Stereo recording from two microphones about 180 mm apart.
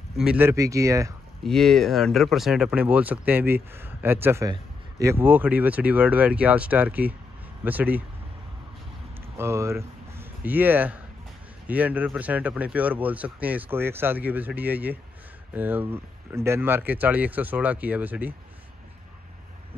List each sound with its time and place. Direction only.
0.2 s speech: 10° right (ahead or behind)
1.4 s speech: centre (ahead or behind)
9.4 s speech: 15° right (ahead or behind)